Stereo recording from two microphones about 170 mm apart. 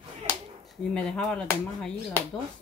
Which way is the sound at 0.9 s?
5° left (ahead or behind).